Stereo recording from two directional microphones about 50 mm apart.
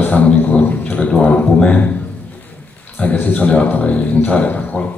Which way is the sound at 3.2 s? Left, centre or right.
Left.